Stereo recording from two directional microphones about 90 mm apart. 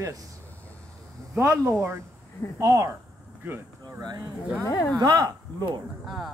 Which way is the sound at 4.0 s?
45° right (ahead or behind).